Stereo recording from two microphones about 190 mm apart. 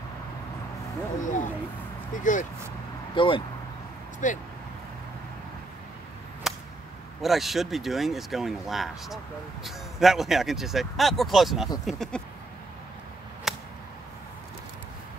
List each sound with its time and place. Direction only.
1.2 s speech: 40° left (ahead or behind)
3.2 s speech: 25° left (ahead or behind)
4.2 s speech: 40° left (ahead or behind)
6.5 s a sound: centre (ahead or behind)
7.2 s speech: centre (ahead or behind)
13.5 s a sound: centre (ahead or behind)